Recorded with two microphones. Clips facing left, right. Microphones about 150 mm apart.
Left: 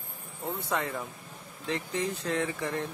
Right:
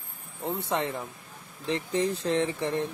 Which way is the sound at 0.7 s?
25° right (ahead or behind).